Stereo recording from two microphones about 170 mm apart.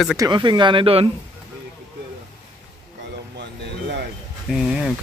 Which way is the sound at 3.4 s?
90° right.